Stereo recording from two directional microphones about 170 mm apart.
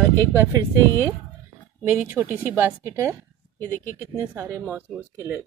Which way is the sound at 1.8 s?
10° right (ahead or behind).